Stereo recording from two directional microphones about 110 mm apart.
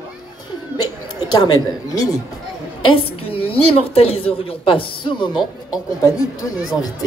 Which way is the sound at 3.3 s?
60° left (ahead or behind).